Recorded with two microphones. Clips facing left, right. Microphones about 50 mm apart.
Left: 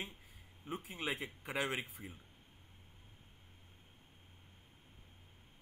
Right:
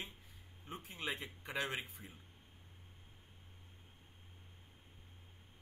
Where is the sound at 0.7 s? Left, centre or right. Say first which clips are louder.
Left 3 dB; centre.